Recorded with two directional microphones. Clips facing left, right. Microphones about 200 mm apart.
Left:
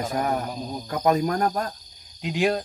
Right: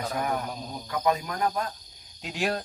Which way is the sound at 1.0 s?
45° left (ahead or behind).